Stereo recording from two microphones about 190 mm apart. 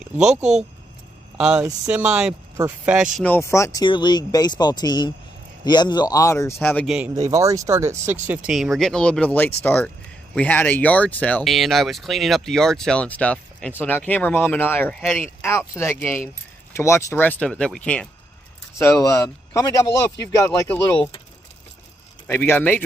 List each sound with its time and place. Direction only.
0.0 s speech: 5° right (ahead or behind)
1.4 s speech: 5° right (ahead or behind)
3.2 s speech: 10° left (ahead or behind)
7.2 s speech: 15° right (ahead or behind)
8.5 s speech: centre (ahead or behind)
22.3 s speech: 10° left (ahead or behind)